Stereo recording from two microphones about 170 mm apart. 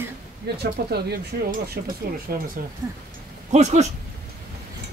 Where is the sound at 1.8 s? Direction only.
55° right (ahead or behind).